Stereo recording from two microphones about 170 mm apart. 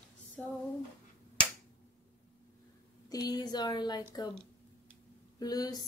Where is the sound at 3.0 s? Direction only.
20° left (ahead or behind).